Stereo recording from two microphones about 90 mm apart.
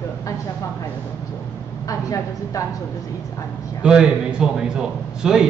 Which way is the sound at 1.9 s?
40° left (ahead or behind).